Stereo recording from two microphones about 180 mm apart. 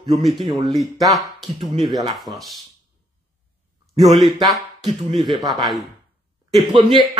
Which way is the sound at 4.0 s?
Centre (ahead or behind).